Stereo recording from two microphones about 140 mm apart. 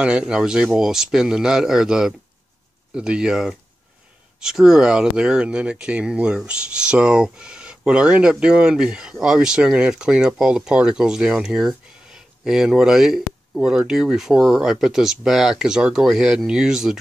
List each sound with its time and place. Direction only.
0.0 s speech: 5° right (ahead or behind)